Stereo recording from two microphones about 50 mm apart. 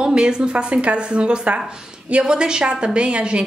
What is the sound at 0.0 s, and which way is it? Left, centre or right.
A woman's voice, centre.